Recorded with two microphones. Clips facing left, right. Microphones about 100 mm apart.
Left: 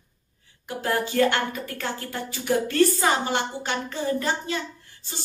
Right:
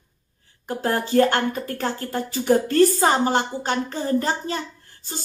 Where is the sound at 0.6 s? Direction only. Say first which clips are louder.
Right 2 dB; 40° right (ahead or behind).